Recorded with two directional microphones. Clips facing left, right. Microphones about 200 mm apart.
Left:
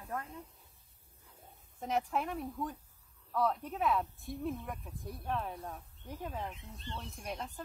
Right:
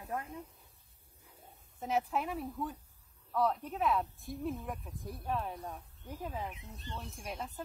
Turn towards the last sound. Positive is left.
turn(degrees=-5)  # may be behind; listen again after turning